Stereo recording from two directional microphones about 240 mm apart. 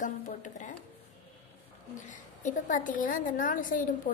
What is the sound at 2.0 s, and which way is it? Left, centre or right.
Speech, left.